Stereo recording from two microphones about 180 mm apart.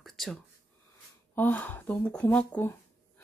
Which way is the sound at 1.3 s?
10° left (ahead or behind).